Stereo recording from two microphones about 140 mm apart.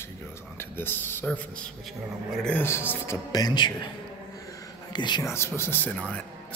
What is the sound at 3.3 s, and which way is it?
Speech, 30° left (ahead or behind).